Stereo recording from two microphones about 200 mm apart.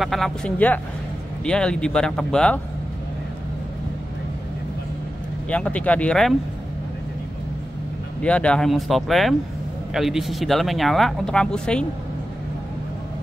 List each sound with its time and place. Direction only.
0.0 s speech: centre (ahead or behind)
5.5 s speech: 5° left (ahead or behind)
8.2 s speech: 5° left (ahead or behind)